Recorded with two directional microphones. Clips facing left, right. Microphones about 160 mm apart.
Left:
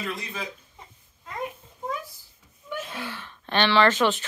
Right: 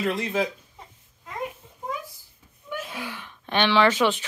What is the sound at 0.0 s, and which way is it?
Speech, 85° right.